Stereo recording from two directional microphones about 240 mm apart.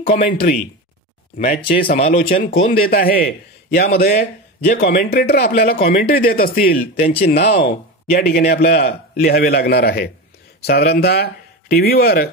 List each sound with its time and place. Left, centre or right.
0.0 s speech: left